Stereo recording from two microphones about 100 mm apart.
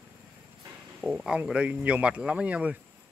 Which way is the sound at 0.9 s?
5° right (ahead or behind).